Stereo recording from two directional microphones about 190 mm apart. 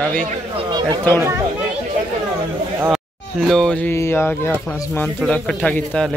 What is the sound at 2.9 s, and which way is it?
Speech, centre (ahead or behind).